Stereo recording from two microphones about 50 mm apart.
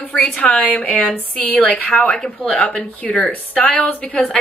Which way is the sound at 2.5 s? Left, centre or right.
Centre.